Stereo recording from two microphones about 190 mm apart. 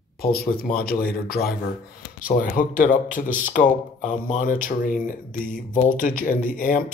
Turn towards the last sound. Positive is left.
turn(degrees=45)  # may be behind; listen again after turning